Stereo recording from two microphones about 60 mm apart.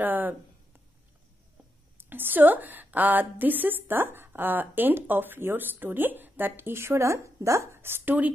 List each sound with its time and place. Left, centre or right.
0.0 s a woman's voice: right
2.0 s a woman's voice: right